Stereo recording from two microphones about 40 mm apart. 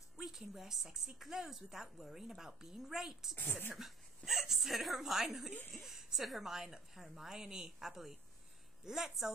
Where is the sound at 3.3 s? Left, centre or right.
Left.